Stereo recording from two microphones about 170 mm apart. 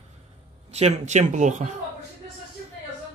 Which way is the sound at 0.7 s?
40° right (ahead or behind).